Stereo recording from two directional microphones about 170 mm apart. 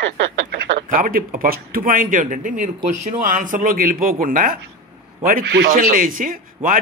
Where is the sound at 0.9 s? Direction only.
55° right (ahead or behind).